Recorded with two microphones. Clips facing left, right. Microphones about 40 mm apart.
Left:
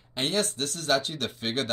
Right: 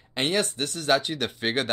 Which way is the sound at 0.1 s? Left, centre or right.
Right.